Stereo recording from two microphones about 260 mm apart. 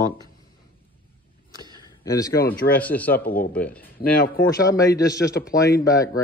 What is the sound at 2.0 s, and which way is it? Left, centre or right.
A man's voice, centre.